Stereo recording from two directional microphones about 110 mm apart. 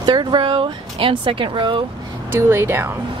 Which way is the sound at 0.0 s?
40° right (ahead or behind).